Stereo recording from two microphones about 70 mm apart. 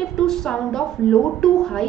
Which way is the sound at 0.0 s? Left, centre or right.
Centre.